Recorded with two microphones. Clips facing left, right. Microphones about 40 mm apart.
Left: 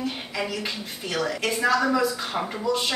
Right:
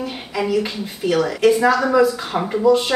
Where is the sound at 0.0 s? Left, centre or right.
Centre.